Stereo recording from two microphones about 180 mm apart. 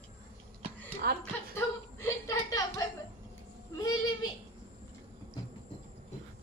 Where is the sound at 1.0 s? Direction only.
60° right (ahead or behind).